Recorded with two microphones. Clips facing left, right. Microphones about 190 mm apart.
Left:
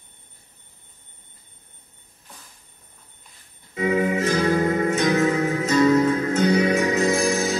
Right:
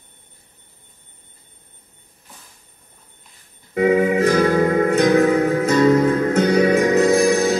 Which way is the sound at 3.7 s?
55° right (ahead or behind).